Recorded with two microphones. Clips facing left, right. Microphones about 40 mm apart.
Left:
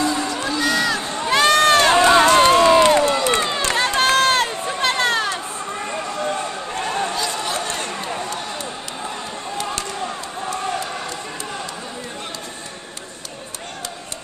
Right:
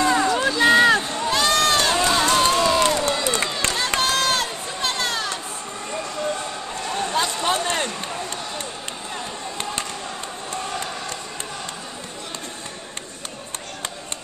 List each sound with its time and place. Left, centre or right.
0.0 s run: right
0.3 s run: centre
0.6 s run: right
1.0 s run: centre
1.3 s crowd: left
3.2 s run: left
5.9 s a sound: centre
7.4 s a sound: right
7.9 s a sound: centre